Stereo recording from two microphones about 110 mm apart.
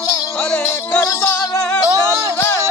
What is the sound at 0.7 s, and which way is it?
Music, 25° left (ahead or behind).